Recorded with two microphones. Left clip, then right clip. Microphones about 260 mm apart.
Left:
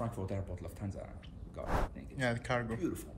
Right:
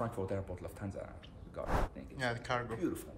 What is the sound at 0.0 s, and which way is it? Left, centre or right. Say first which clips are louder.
Speech: right 2 dB; centre.